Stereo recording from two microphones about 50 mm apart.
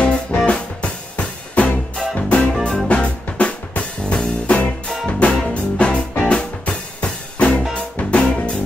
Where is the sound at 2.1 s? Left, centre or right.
Left.